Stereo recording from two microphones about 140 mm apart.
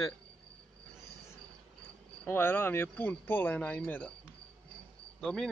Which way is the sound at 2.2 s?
15° left (ahead or behind).